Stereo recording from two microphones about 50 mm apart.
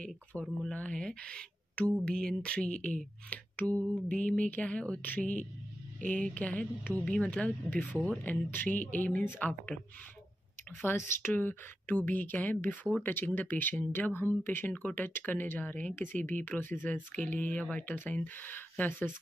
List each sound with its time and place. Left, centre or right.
0.0 s speech: left
3.3 s a sound: left
4.1 s speech: left
5.0 s speech: left
7.1 s speech: left
10.9 s speech: left
15.9 s speech: left
16.2 s speech: left
16.9 s speech: left
17.8 s speech: left